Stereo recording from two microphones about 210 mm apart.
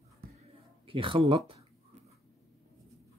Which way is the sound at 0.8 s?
25° right (ahead or behind).